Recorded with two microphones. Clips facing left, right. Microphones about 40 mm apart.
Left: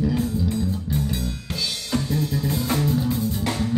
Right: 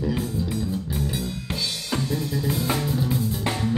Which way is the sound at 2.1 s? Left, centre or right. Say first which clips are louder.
Left 1 dB; centre.